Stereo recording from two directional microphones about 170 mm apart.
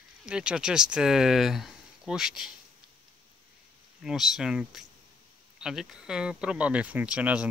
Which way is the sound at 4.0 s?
Centre (ahead or behind).